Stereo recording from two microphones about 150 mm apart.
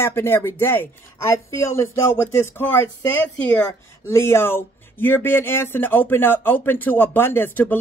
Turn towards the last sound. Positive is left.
turn(degrees=15)  # may be behind; listen again after turning